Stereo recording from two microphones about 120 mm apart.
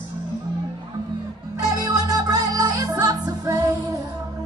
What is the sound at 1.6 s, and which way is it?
Music, 30° right (ahead or behind).